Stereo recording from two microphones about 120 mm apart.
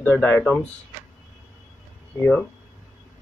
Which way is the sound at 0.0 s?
15° left (ahead or behind).